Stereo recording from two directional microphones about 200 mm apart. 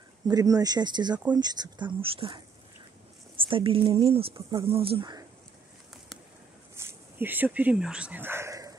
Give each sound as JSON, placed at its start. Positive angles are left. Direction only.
{"t": 0.3, "sound": "speech", "side_deg": -20}
{"t": 6.8, "sound": "speech", "side_deg": -10}